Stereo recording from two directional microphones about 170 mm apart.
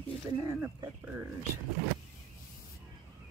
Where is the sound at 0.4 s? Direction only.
20° right (ahead or behind).